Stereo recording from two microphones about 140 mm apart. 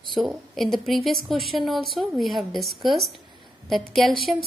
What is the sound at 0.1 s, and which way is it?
A woman's voice, centre (ahead or behind).